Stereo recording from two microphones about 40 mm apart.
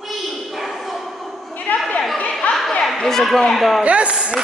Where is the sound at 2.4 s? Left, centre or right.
Left.